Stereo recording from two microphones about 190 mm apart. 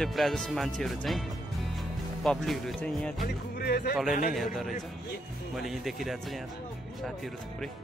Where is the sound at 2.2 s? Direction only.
Centre (ahead or behind).